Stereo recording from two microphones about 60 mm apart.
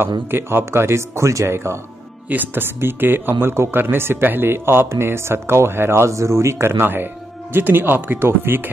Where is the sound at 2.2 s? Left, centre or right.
Right.